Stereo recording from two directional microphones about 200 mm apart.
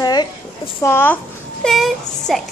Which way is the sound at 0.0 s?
20° left (ahead or behind).